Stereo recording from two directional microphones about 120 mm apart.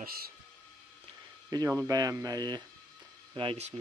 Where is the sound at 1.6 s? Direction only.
25° right (ahead or behind).